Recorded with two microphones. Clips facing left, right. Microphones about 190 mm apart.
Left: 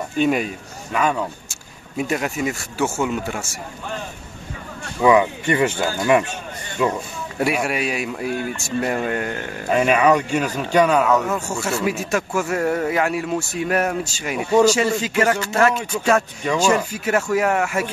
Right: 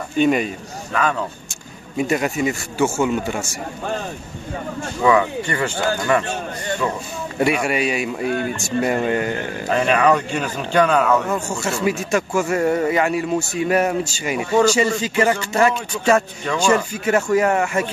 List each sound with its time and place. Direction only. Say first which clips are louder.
0.2 s speech: right 2 dB; centre (ahead or behind)
5.0 s speech: left 2 dB; 15° left (ahead or behind)
7.3 s speech: right 2 dB; centre (ahead or behind)